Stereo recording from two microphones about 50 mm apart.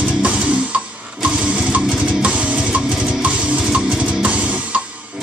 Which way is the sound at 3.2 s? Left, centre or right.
Right.